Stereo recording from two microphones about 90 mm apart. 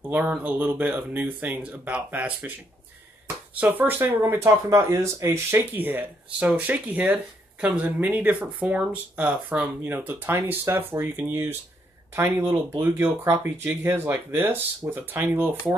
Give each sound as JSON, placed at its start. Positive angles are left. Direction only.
{"t": 0.3, "sound": "speech", "side_deg": -20}
{"t": 3.5, "sound": "speech", "side_deg": -15}
{"t": 4.6, "sound": "speech", "side_deg": -40}